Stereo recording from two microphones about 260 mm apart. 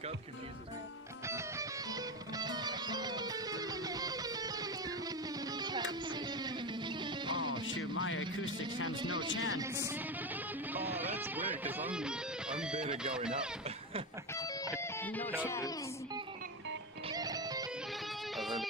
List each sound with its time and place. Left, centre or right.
1.2 s music: centre
7.6 s music: left
8.8 s speech: centre
9.3 s speech: left
9.6 s speech: centre
14.3 s music: centre
17.1 s music: centre
18.3 s music: centre